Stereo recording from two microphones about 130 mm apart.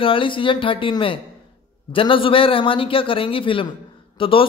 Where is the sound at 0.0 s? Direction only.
40° left (ahead or behind).